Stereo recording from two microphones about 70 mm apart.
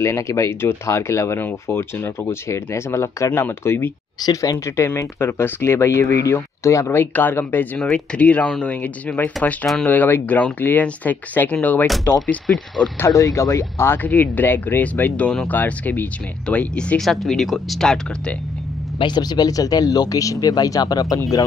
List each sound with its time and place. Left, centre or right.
0.0 s speech: left
3.3 s speech: left
4.3 s speech: left
4.6 s speech: left
7.8 s speech: centre; by 12.2 s left
12.4 s speech: centre
13.0 s speech: left
14.0 s speech: left
17.0 s speech: centre
19.0 s speech: left